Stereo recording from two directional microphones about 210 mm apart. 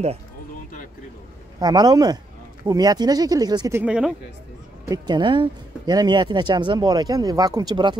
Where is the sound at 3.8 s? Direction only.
5° right (ahead or behind).